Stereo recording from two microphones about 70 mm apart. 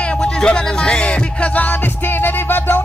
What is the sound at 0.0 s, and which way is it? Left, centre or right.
Music, centre.